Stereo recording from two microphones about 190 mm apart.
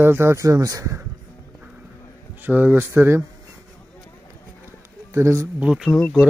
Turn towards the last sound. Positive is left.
turn(degrees=0)  # may be behind; listen again after turning